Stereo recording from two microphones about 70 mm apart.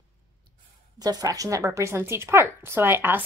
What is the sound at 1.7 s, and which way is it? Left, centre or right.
Speech, right.